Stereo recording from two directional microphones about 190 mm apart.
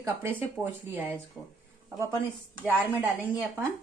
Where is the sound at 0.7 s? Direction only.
10° right (ahead or behind).